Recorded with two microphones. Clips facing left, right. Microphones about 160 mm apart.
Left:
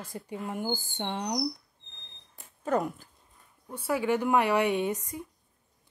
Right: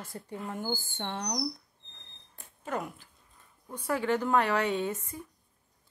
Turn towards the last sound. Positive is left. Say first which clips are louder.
# left 3 dB
turn(degrees=15)  # may be behind; listen again after turning